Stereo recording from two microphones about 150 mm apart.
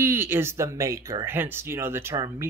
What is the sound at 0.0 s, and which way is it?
Speech, 15° right (ahead or behind).